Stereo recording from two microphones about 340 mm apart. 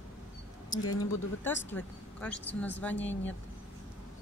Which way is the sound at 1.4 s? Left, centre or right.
Centre.